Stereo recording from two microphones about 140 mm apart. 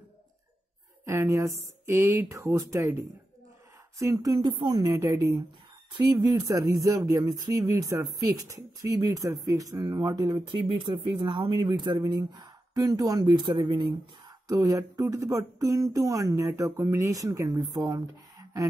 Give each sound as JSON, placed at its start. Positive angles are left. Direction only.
{"t": 1.0, "sound": "a woman's voice", "side_deg": -20}
{"t": 14.5, "sound": "speech", "side_deg": -20}